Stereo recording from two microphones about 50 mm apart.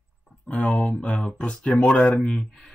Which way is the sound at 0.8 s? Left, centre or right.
Left.